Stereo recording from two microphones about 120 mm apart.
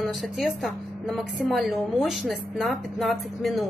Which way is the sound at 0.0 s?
Centre (ahead or behind).